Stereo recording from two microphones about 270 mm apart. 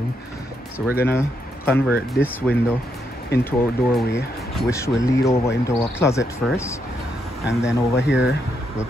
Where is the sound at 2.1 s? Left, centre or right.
Centre.